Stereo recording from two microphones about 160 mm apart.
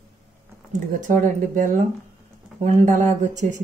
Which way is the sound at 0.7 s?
50° right (ahead or behind).